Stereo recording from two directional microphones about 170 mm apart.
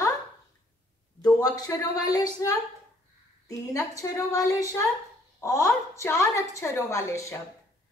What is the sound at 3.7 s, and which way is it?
A woman's voice, 20° left (ahead or behind).